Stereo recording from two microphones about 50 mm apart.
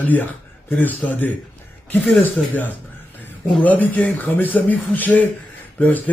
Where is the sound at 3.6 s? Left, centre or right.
Left.